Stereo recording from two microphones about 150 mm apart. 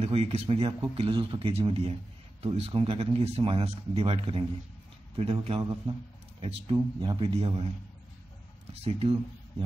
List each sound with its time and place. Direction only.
0.0 s speech: 40° right (ahead or behind)
6.4 s speech: 35° right (ahead or behind)
8.8 s speech: 40° right (ahead or behind)